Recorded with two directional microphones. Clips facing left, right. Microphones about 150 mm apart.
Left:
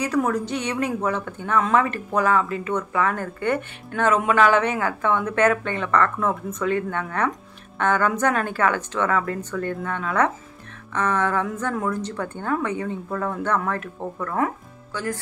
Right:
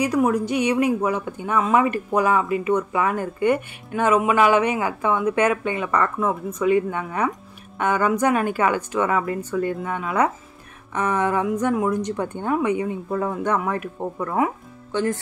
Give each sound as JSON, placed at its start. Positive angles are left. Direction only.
{"t": 0.0, "sound": "speech", "side_deg": -15}